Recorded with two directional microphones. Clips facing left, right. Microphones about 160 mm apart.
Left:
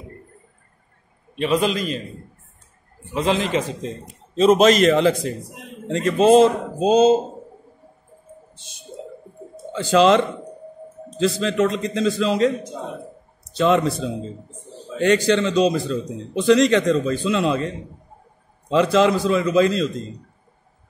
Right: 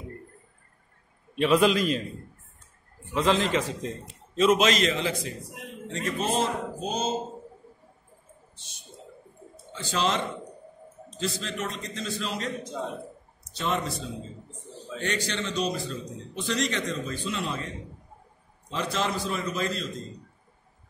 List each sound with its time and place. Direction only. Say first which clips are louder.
1.3 s a man's voice: left 1 dB; centre (ahead or behind)
3.1 s a man's voice: left 3 dB; 15° left (ahead or behind)
4.4 s a man's voice: left 8 dB; 40° left (ahead or behind); by 5.3 s 65° left (ahead or behind)
5.9 s a man's voice: left 14 dB; 90° left
9.7 s a man's voice: left 13 dB; 90° left